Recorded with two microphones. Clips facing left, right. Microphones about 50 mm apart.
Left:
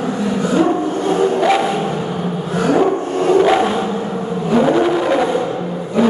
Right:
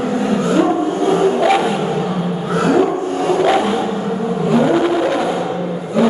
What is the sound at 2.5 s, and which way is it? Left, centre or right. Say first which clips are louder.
Dog: right 1 dB; right.